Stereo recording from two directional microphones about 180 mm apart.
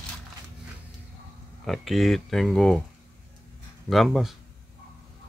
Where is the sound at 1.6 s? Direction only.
Centre (ahead or behind).